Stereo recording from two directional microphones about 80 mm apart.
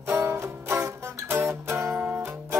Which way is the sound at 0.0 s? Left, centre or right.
Right.